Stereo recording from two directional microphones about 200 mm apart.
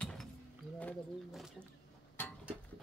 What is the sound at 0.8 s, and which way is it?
Speech, 5° left (ahead or behind).